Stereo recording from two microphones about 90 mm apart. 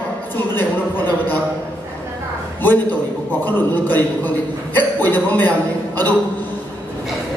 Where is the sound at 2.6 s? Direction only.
20° left (ahead or behind).